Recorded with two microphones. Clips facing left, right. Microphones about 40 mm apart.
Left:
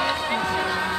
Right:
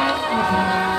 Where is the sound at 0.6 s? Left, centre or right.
Centre.